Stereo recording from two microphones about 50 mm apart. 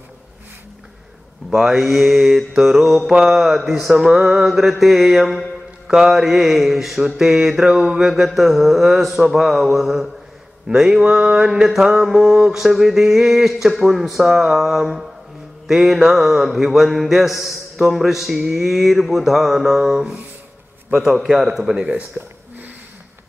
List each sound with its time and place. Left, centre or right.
1.5 s speech: centre
7.0 s mantra: centre
7.8 s speech: centre
10.7 s mantra: centre
12.4 s speech: centre
20.9 s mantra: centre
22.2 s speech: centre